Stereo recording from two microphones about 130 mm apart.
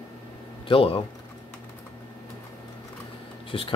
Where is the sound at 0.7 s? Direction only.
45° left (ahead or behind).